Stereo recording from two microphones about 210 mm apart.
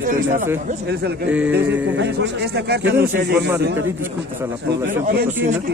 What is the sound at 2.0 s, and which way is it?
Speech, 55° right (ahead or behind).